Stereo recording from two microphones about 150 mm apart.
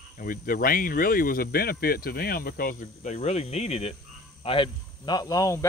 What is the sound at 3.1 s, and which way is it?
Speech, 45° left (ahead or behind).